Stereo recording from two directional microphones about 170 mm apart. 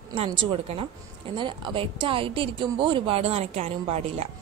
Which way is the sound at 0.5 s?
35° right (ahead or behind).